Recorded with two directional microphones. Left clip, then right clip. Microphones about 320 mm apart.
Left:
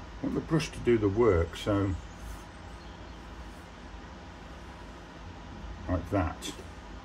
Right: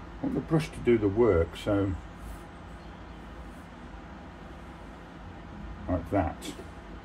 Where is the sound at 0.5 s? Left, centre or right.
Centre.